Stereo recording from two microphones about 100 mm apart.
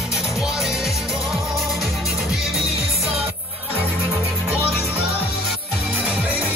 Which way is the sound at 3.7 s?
25° right (ahead or behind).